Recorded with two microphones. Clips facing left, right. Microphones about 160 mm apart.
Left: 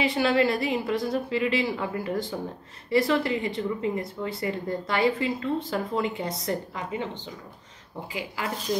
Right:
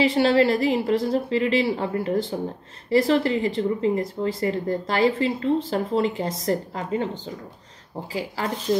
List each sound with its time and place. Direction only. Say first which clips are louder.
0.0 s speech: right 5 dB; 30° right (ahead or behind)
8.1 s speech: right 5 dB; 35° right (ahead or behind)